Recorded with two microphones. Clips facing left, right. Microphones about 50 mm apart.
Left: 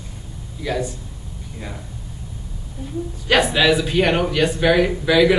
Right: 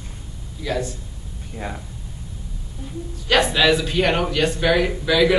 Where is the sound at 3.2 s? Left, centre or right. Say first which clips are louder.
Left 1 dB; centre.